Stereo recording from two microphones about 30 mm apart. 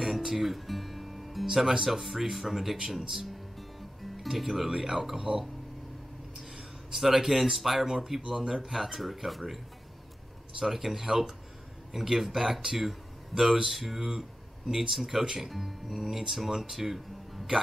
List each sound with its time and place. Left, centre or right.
0.0 s music: centre
1.5 s speech: centre
4.2 s speech: centre
6.5 s a sound: centre
7.5 s speech: centre
10.6 s speech: centre
17.3 s music: centre